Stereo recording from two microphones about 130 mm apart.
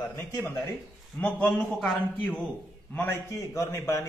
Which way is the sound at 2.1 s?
10° left (ahead or behind).